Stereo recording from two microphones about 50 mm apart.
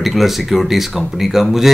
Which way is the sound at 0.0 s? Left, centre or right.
Centre.